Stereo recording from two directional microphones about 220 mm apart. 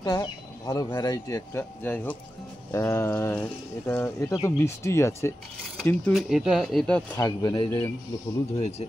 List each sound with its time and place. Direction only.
0.0 s speech: 15° left (ahead or behind); by 7.0 s centre (ahead or behind)
7.2 s speech: 15° left (ahead or behind)